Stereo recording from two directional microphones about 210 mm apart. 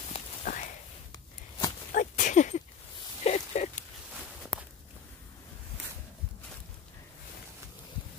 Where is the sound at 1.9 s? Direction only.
35° left (ahead or behind).